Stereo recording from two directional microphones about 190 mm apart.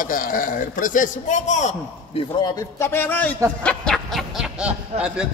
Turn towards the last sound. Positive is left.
turn(degrees=-5)  # may be behind; listen again after turning